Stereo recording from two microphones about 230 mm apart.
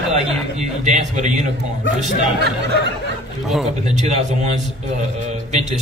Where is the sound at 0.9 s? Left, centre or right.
Right.